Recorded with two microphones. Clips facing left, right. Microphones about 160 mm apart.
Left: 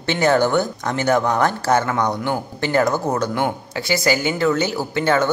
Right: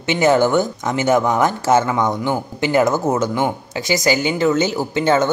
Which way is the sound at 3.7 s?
15° right (ahead or behind).